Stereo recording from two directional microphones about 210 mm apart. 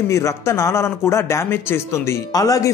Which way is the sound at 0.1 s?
15° left (ahead or behind).